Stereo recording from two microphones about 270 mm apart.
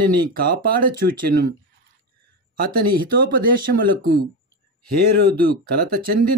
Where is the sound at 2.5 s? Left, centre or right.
Right.